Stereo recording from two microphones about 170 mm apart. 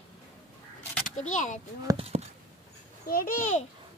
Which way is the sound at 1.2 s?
45° left (ahead or behind).